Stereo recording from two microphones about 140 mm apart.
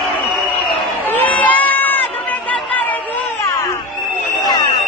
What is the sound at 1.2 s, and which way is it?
Crowd, 10° left (ahead or behind).